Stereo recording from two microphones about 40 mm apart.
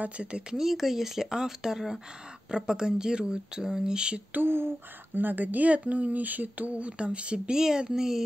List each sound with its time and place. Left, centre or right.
0.0 s speech: right
0.5 s speech: centre
5.1 s speech: right; by 8.2 s centre